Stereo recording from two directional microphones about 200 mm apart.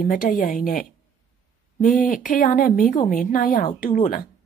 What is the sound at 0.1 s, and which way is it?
A woman's voice, 40° left (ahead or behind).